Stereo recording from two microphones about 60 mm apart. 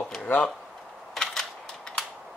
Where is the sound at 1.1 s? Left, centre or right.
Centre.